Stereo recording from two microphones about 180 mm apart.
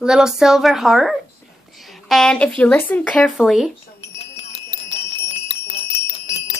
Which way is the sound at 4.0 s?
35° left (ahead or behind).